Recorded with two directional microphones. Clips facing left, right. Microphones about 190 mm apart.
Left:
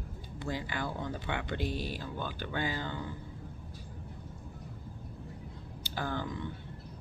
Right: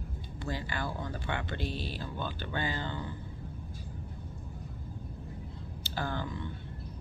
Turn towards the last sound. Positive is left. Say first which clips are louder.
# even
turn(degrees=15)  # may be behind; listen again after turning